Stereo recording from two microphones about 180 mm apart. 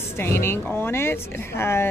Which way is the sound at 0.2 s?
15° left (ahead or behind).